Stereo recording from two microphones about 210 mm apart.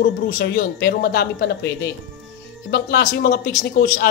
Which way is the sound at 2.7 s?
50° left (ahead or behind).